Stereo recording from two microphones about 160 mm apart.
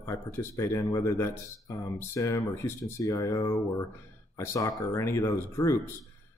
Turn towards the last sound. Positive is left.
turn(degrees=20)  # may be behind; listen again after turning